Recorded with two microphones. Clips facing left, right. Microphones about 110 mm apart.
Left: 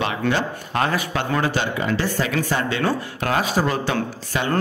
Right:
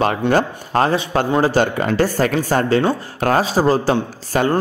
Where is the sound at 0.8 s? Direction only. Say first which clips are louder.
Right 5 dB; 30° right (ahead or behind).